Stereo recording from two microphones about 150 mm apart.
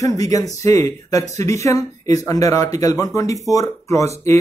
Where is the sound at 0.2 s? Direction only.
25° left (ahead or behind).